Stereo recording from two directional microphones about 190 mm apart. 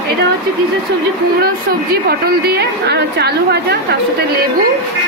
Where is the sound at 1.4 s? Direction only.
55° right (ahead or behind).